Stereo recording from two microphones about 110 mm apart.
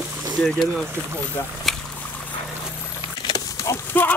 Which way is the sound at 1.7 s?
Centre (ahead or behind).